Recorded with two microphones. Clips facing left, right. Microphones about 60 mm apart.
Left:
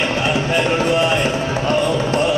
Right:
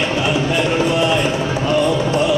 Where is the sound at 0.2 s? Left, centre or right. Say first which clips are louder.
Right 1 dB; left.